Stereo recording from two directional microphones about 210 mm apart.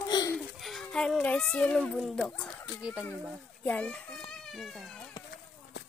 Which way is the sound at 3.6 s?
5° left (ahead or behind).